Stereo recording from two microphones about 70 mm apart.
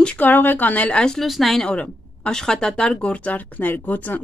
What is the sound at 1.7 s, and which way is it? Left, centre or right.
Speech, centre.